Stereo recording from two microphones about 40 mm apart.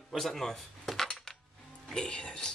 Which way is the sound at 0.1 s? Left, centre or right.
Centre.